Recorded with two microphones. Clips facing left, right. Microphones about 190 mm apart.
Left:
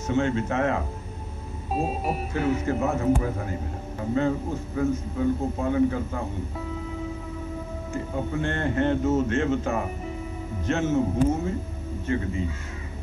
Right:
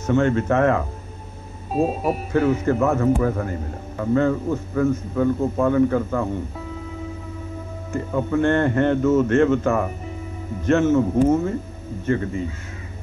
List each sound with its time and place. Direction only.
0.0 s a man's voice: 55° right (ahead or behind)
1.9 s speech: centre (ahead or behind)
2.3 s a man's voice: 55° right (ahead or behind)
8.1 s a man's voice: 60° right (ahead or behind)